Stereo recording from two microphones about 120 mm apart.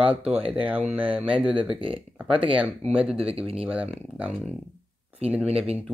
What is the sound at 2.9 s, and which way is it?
Speech, 10° right (ahead or behind).